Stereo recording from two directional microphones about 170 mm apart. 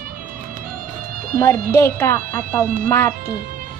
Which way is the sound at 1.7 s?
15° left (ahead or behind).